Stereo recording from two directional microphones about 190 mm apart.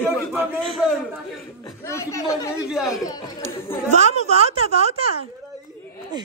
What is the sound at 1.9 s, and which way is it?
Speech, 15° left (ahead or behind).